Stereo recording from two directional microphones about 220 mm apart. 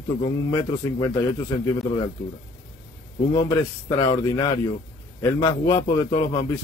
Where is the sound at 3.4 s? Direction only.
15° left (ahead or behind).